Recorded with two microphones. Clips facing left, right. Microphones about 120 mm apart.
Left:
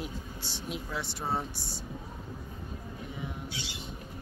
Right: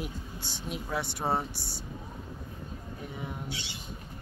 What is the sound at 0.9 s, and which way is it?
Speech, 55° right (ahead or behind).